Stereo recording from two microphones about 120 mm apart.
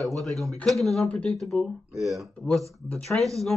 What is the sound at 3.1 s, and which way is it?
Speech, 15° left (ahead or behind).